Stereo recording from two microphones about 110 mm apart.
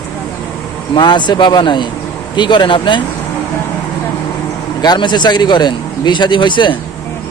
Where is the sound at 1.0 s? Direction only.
45° left (ahead or behind).